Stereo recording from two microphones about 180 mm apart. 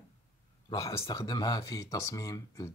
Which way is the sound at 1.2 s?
20° left (ahead or behind).